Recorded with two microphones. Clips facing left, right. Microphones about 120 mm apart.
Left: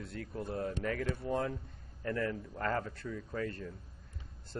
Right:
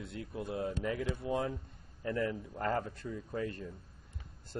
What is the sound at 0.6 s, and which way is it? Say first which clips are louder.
Speech: even; 15° right (ahead or behind).